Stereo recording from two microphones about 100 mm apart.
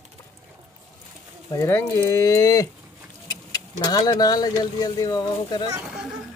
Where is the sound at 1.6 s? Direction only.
25° left (ahead or behind); by 5.7 s 40° left (ahead or behind).